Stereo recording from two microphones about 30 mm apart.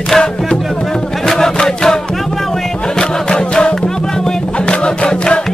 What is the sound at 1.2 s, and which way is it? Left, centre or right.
Music, centre.